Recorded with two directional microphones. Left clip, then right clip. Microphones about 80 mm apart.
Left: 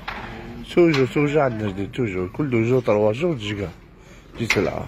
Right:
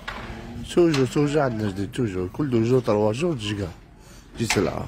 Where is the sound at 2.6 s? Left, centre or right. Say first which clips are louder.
Left 2 dB; right.